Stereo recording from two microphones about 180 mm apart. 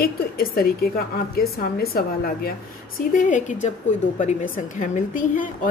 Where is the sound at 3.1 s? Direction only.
45° left (ahead or behind).